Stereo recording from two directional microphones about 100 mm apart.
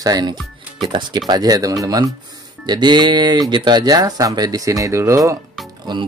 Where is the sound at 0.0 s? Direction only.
40° right (ahead or behind).